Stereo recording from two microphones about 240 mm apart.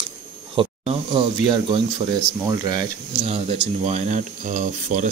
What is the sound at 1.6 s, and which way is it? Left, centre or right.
Speech, centre.